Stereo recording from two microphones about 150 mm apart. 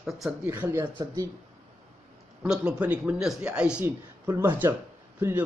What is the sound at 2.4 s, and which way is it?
Speech, 5° right (ahead or behind).